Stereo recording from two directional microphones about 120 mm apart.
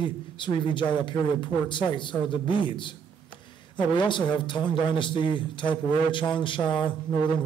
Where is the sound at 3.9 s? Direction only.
40° left (ahead or behind).